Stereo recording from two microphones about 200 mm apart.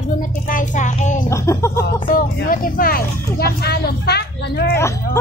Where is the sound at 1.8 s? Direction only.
50° left (ahead or behind).